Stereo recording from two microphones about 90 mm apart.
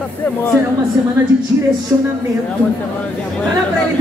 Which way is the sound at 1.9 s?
25° right (ahead or behind).